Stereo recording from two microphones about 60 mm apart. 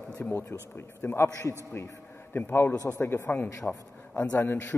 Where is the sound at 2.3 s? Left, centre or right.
Left.